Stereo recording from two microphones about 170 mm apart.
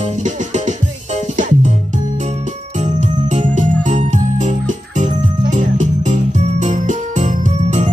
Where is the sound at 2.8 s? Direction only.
45° right (ahead or behind).